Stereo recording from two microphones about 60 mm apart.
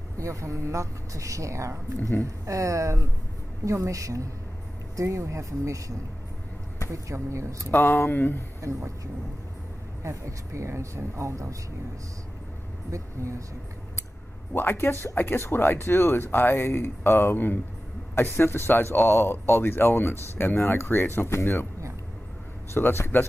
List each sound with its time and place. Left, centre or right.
0.2 s a woman's voice: right
4.9 s a woman's voice: right
7.7 s speech: left
8.5 s a woman's voice: right
12.9 s a woman's voice: right
14.5 s speech: left
22.8 s speech: left